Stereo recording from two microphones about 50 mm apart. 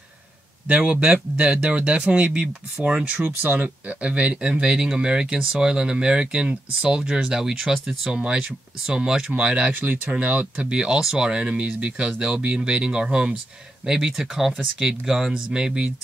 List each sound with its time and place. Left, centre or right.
0.7 s speech: right
3.5 s speech: right
9.7 s speech: right
10.1 s speech: right